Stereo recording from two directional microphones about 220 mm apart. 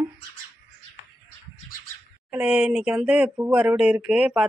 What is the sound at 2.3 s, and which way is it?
Speech, 5° right (ahead or behind).